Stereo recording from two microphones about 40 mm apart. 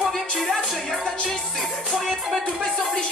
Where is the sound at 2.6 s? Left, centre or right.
Centre.